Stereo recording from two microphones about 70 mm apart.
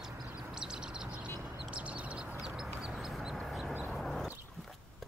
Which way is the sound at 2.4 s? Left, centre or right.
Centre.